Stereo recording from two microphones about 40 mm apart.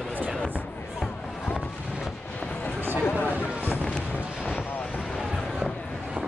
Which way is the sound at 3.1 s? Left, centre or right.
Left.